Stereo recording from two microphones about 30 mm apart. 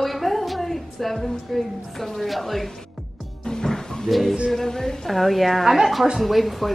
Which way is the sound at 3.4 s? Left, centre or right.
Centre.